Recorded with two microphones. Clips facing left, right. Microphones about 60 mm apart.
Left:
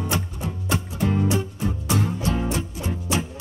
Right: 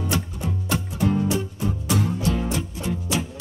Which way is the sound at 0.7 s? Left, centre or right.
Left.